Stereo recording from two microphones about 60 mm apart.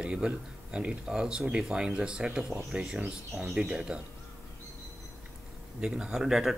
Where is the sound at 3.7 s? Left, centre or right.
Centre.